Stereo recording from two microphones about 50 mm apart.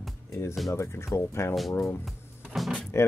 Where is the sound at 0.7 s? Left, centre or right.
Left.